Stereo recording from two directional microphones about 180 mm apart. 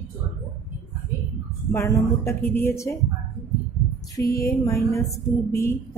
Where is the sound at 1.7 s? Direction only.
15° left (ahead or behind).